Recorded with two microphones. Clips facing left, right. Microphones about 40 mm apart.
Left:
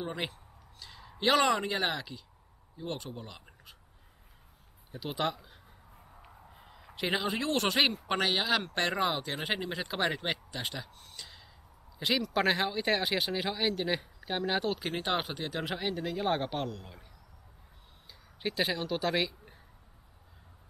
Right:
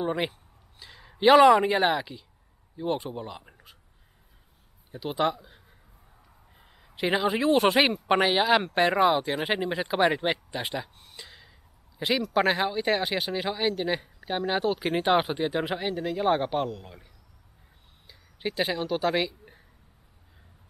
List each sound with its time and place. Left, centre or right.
0.0 s a man's voice: centre
4.9 s speech: centre
6.5 s a sound: centre
7.0 s speech: centre